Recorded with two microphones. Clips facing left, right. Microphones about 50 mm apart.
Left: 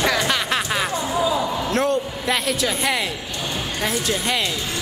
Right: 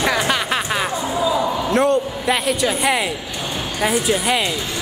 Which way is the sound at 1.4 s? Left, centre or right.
Centre.